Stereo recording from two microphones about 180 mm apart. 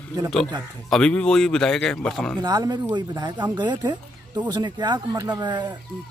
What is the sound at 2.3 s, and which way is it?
Speech, 20° right (ahead or behind).